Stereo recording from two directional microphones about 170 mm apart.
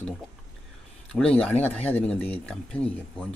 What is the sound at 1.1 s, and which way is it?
Speech, 5° left (ahead or behind).